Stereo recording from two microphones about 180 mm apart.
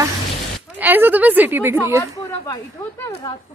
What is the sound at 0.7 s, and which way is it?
A woman's voice, 10° right (ahead or behind).